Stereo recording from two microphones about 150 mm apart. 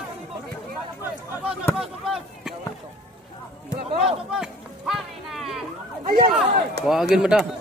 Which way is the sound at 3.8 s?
35° right (ahead or behind).